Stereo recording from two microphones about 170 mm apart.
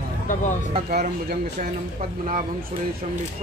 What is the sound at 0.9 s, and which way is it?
Speech, 70° right (ahead or behind).